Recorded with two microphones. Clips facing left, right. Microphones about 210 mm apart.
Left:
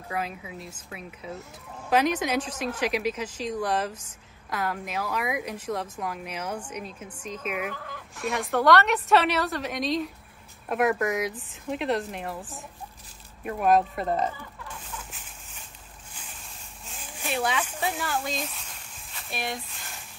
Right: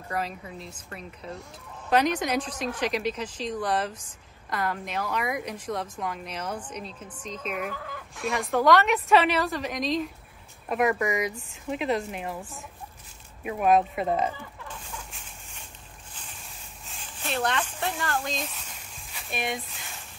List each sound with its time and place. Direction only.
0.1 s a woman's voice: 5° left (ahead or behind)
16.8 s speech: 5° left (ahead or behind)